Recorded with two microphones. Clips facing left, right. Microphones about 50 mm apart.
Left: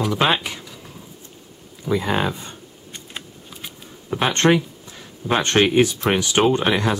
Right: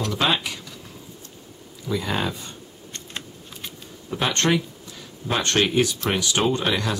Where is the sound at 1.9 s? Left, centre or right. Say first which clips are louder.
Left 4 dB; left.